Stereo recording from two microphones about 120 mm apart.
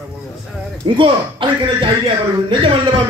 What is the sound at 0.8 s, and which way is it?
Speech, 45° right (ahead or behind).